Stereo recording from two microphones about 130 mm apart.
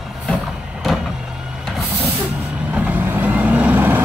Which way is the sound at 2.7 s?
10° right (ahead or behind).